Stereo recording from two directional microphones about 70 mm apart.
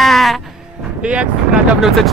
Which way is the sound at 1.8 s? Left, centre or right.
Centre.